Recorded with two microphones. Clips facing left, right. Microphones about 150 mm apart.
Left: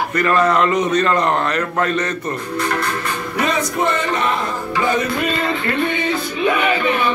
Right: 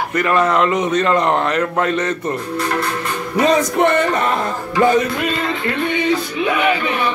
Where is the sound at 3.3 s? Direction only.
40° right (ahead or behind).